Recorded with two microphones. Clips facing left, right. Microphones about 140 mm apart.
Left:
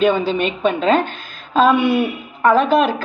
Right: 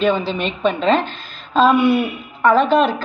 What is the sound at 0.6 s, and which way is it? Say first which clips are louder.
A woman's voice: right 1 dB; 45° left (ahead or behind).